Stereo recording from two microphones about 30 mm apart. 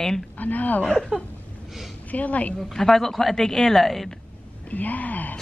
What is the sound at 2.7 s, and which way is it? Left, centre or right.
Speech, centre.